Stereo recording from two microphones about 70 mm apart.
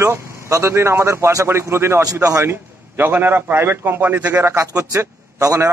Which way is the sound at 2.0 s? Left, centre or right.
Right.